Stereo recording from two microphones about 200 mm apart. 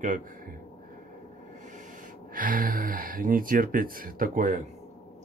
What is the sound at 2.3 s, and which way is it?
Speech, 45° right (ahead or behind).